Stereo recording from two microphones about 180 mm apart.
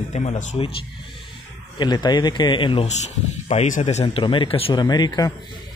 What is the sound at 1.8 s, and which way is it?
Speech, 25° left (ahead or behind).